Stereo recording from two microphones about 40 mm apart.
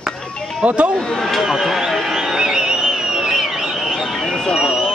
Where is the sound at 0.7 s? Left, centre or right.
Right.